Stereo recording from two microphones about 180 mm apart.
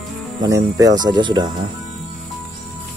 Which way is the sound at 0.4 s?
20° right (ahead or behind).